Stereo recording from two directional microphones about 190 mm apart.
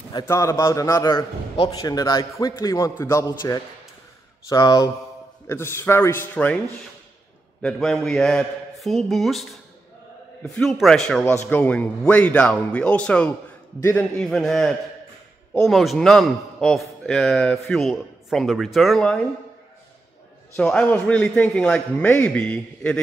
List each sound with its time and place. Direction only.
0.1 s a man's voice: 15° left (ahead or behind)
7.6 s a man's voice: 5° left (ahead or behind)
14.1 s a man's voice: 5° left (ahead or behind)
20.5 s a man's voice: 5° left (ahead or behind)